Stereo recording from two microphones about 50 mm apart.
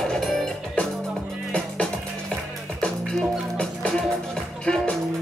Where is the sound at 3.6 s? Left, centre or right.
Centre.